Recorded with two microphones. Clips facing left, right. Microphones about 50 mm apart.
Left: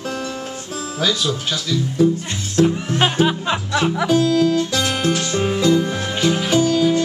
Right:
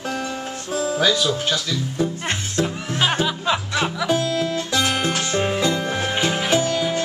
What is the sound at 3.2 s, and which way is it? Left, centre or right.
Music, left.